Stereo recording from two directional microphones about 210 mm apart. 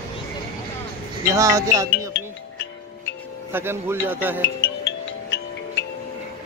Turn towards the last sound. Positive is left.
turn(degrees=60)  # may be behind; listen again after turning